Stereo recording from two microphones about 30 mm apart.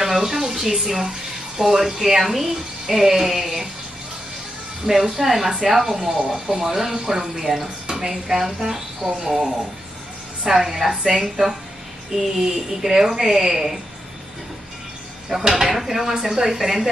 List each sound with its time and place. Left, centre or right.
0.0 s speech: centre
4.8 s speech: centre
10.5 s a woman's voice: centre
15.7 s speech: centre